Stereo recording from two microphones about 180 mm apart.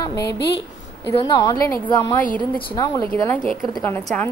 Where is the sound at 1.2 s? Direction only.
25° left (ahead or behind).